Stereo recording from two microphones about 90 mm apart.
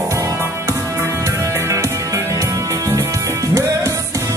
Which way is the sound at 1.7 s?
35° right (ahead or behind).